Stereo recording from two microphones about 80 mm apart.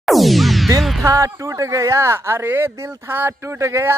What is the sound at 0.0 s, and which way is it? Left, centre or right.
Music, centre.